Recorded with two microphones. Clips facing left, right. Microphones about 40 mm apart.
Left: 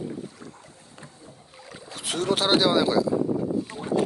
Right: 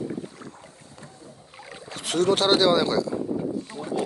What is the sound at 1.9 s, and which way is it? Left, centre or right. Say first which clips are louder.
Speech: right 4 dB; centre.